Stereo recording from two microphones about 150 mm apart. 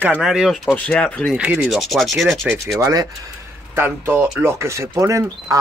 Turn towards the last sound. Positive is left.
turn(degrees=-20)  # may be behind; listen again after turning